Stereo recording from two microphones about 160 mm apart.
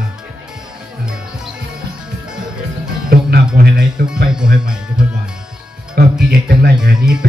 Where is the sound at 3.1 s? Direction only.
70° right (ahead or behind).